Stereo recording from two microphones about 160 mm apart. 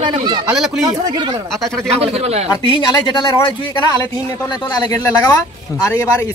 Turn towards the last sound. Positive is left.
turn(degrees=20)  # may be behind; listen again after turning